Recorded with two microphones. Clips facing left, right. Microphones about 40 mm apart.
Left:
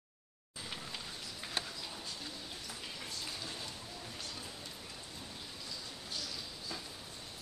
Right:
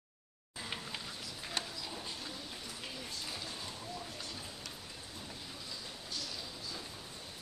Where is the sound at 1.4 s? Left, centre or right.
Centre.